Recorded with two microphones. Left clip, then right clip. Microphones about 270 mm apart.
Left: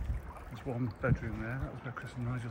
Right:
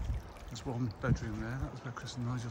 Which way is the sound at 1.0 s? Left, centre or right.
Centre.